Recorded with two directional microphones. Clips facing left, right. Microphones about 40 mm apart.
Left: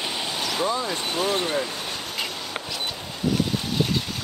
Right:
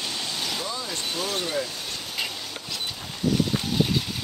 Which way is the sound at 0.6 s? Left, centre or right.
Left.